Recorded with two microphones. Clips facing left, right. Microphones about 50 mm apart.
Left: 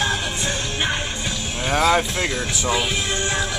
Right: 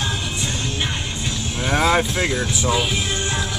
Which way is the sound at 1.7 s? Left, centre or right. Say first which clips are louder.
Even; centre.